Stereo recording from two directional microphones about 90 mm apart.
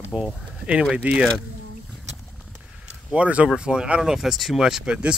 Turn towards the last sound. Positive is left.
turn(degrees=-10)  # may be behind; listen again after turning